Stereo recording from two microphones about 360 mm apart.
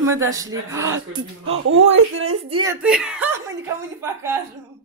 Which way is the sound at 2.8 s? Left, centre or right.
Centre.